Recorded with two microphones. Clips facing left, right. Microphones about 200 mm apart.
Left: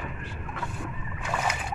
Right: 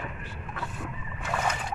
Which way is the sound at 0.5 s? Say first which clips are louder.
Even; centre (ahead or behind).